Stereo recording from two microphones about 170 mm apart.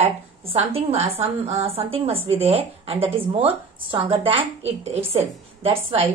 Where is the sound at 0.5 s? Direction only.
35° right (ahead or behind).